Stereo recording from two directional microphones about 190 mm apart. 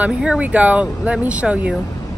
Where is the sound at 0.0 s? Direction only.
5° right (ahead or behind).